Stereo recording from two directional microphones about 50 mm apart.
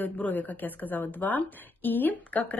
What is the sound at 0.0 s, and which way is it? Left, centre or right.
A woman's voice, left.